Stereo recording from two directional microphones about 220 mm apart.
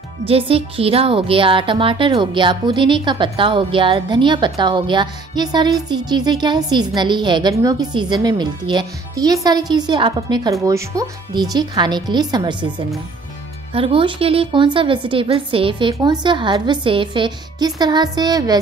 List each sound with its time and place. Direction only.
0.3 s a woman's voice: 25° right (ahead or behind)